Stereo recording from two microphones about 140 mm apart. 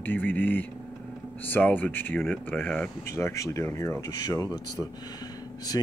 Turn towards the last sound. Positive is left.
turn(degrees=30)  # may be behind; listen again after turning